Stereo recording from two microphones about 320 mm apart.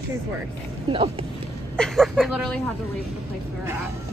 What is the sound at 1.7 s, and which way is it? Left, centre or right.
Speech, centre.